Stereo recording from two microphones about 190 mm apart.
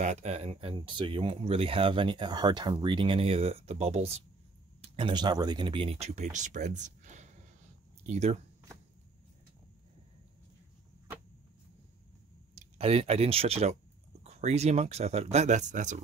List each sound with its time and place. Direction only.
0.0 s speech: 35° right (ahead or behind)
12.5 s speech: 30° right (ahead or behind)